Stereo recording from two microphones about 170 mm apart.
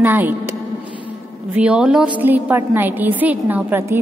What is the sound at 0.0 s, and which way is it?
Speech, 10° right (ahead or behind).